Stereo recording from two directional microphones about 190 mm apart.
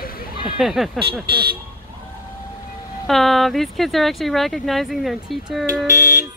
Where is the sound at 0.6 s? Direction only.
Centre (ahead or behind).